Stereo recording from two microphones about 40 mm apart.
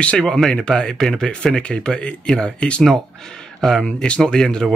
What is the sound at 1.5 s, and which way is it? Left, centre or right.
Speech, left.